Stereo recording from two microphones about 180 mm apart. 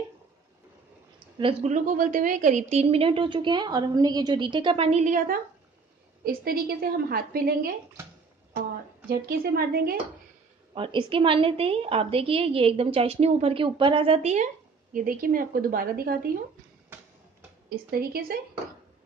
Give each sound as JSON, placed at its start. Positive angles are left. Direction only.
{"t": 1.4, "sound": "a woman's voice", "side_deg": -35}
{"t": 9.1, "sound": "a woman's voice", "side_deg": -60}
{"t": 10.7, "sound": "a woman's voice", "side_deg": -30}
{"t": 17.6, "sound": "a woman's voice", "side_deg": -55}